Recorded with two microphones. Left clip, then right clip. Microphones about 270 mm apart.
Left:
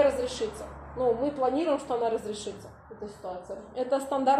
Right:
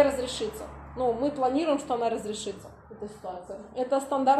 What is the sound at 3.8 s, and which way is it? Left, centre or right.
Speech, centre.